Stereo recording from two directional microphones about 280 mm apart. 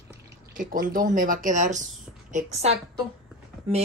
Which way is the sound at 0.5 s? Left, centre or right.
Right.